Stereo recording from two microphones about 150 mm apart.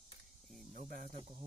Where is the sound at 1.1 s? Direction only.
40° right (ahead or behind).